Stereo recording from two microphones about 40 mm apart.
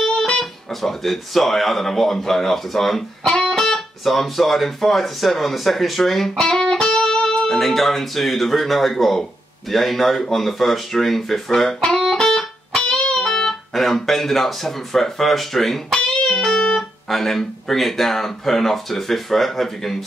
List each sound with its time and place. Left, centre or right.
0.0 s speech: centre
12.9 s speech: centre
16.0 s music: centre
16.4 s speech: centre